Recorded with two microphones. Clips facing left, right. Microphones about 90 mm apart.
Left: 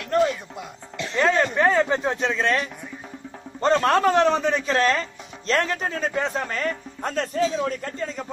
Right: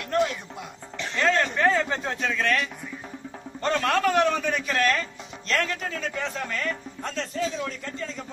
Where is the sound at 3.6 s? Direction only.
30° left (ahead or behind).